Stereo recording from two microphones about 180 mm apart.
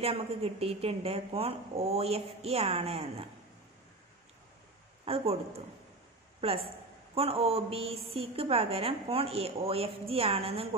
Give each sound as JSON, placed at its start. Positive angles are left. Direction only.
{"t": 0.0, "sound": "a woman's voice", "side_deg": -35}
{"t": 5.0, "sound": "speech", "side_deg": -35}
{"t": 6.4, "sound": "a woman's voice", "side_deg": -35}